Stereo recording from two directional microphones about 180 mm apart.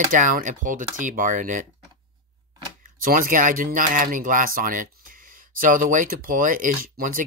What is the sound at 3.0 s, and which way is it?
Speech, 50° right (ahead or behind).